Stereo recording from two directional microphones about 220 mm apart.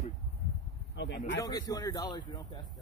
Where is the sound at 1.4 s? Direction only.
15° left (ahead or behind).